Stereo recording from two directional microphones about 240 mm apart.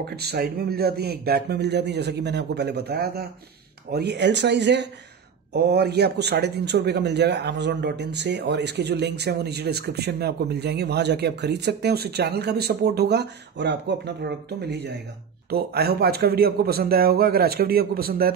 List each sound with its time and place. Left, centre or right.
0.0 s a man's voice: right